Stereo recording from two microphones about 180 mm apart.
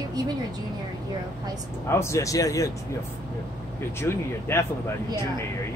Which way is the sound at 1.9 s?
15° left (ahead or behind).